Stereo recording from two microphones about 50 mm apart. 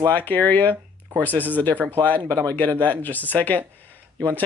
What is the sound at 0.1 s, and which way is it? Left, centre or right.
Speech, left.